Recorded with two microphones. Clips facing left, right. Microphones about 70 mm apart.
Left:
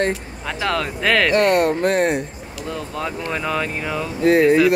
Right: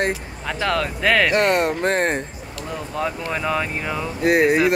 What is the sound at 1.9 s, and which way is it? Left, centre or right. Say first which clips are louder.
Speech: left 2 dB; right.